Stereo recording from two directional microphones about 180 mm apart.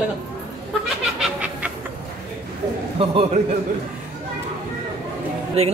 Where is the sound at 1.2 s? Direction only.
5° right (ahead or behind).